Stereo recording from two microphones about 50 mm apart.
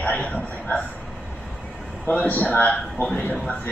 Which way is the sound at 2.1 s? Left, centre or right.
Left.